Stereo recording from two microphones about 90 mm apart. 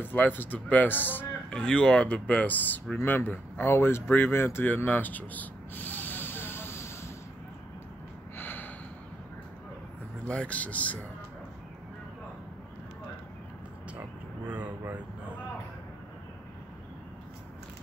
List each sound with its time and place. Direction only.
0.0 s speech: 20° left (ahead or behind)
8.4 s snort: 25° left (ahead or behind)
10.2 s speech: 15° left (ahead or behind)
14.5 s a sound: 15° right (ahead or behind)